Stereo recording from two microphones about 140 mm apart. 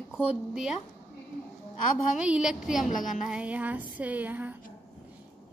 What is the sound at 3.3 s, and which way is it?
A woman's voice, 10° right (ahead or behind).